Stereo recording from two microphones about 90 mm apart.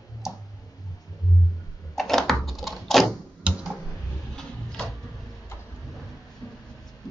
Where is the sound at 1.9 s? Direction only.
5° left (ahead or behind).